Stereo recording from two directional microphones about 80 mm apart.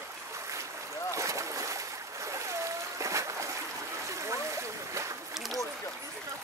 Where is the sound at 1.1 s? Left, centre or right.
Right.